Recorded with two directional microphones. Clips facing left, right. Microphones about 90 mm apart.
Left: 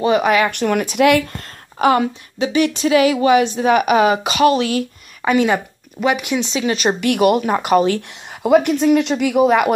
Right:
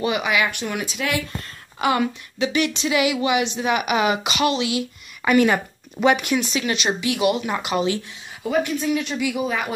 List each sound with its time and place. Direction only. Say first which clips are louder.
0.0 s speech: left 7 dB; 40° left (ahead or behind)
0.5 s speech: left 9 dB; 60° left (ahead or behind)
1.8 s speech: left 6 dB; 35° left (ahead or behind)
5.2 s speech: left 2 dB; 25° left (ahead or behind)
6.0 s speech: even; 5° left (ahead or behind)
6.3 s speech: left 3 dB; 30° left (ahead or behind)
6.8 s speech: left 8 dB; 50° left (ahead or behind)
8.5 s speech: left 9 dB; 90° left